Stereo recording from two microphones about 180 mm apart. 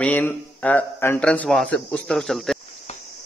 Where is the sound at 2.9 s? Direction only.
35° left (ahead or behind).